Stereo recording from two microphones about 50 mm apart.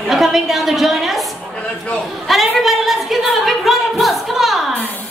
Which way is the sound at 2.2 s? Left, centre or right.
Centre.